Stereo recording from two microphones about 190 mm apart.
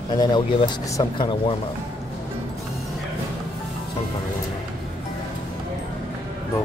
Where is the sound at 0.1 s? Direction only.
20° left (ahead or behind).